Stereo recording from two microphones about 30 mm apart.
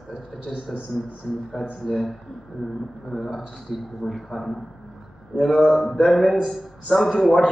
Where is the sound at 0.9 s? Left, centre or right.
Centre.